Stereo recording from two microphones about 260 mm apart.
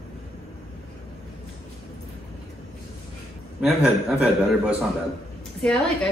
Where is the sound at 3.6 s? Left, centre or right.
Centre.